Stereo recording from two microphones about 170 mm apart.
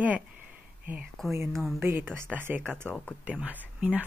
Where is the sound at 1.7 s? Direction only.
10° right (ahead or behind).